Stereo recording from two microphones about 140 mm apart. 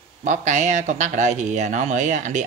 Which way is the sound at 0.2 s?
60° right (ahead or behind).